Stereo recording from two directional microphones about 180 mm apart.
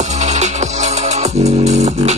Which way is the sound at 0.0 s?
40° right (ahead or behind).